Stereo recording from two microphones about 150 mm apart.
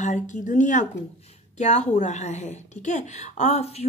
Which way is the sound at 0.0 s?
55° left (ahead or behind).